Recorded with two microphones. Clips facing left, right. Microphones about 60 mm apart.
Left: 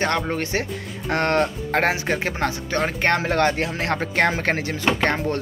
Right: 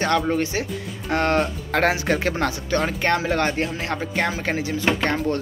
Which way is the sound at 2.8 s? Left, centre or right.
Left.